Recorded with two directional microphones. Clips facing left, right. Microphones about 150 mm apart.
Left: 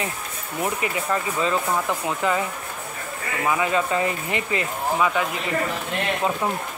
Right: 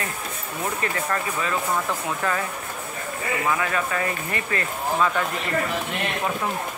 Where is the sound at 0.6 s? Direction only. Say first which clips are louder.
Left 2 dB; 15° left (ahead or behind).